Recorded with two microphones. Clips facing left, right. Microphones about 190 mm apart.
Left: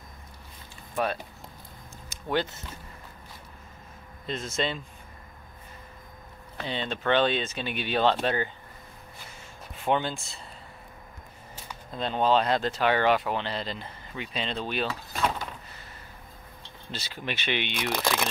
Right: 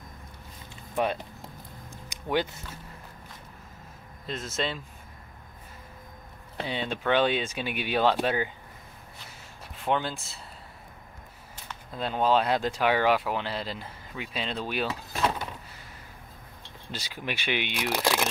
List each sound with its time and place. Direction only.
0.9 s speech: 20° right (ahead or behind)
2.0 s a sound: 15° right (ahead or behind)
4.3 s speech: centre (ahead or behind)
6.6 s speech: 10° right (ahead or behind)
9.8 s speech: centre (ahead or behind)
11.9 s speech: 5° right (ahead or behind)
16.9 s speech: 10° right (ahead or behind)